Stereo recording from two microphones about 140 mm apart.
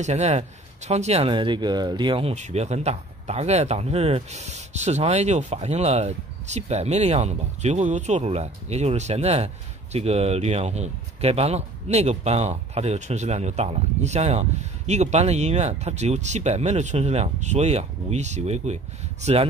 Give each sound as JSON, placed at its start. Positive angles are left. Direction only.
{"t": 0.0, "sound": "speech", "side_deg": -55}
{"t": 1.3, "sound": "speech", "side_deg": -35}